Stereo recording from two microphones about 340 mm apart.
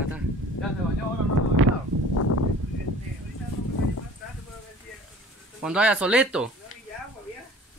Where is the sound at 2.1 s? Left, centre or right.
Left.